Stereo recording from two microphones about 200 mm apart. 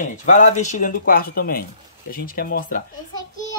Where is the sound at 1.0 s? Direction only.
50° left (ahead or behind).